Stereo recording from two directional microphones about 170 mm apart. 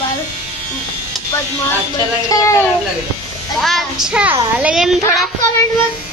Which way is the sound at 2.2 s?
20° left (ahead or behind).